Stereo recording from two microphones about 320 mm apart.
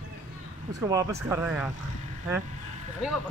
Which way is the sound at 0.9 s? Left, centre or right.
Centre.